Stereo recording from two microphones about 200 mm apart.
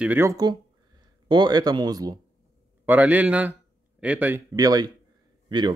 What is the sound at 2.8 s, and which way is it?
Speech, 10° right (ahead or behind).